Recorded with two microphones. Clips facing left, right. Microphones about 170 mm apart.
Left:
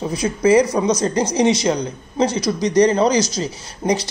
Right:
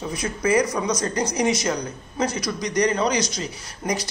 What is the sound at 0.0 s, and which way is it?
Speech, 30° left (ahead or behind).